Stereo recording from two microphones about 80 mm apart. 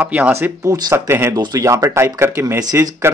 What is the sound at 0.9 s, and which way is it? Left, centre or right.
Speech, right.